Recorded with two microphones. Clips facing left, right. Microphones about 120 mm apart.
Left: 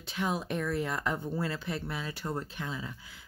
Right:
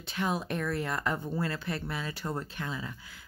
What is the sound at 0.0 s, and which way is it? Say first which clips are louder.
Speech: right 1 dB; 15° left (ahead or behind).